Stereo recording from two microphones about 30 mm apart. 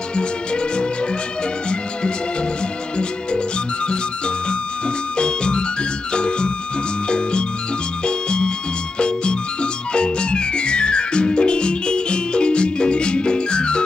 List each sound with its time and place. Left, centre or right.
5.1 s music: left
8.0 s music: left